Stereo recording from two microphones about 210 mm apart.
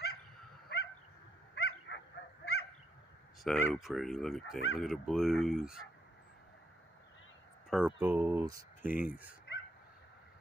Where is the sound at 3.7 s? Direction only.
Centre (ahead or behind).